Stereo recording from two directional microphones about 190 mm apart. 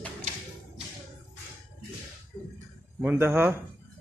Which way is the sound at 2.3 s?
Centre (ahead or behind).